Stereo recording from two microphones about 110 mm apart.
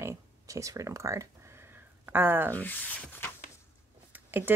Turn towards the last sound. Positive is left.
turn(degrees=-15)  # may be behind; listen again after turning